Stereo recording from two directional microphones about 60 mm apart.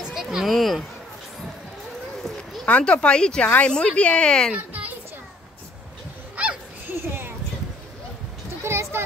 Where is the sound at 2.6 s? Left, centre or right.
Centre.